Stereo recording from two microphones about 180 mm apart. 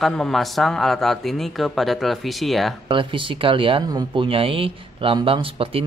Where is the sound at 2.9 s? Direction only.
30° right (ahead or behind).